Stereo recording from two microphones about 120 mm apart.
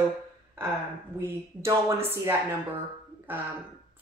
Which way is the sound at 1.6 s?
25° right (ahead or behind).